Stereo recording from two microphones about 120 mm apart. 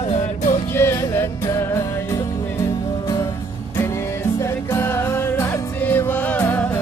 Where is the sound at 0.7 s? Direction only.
20° left (ahead or behind).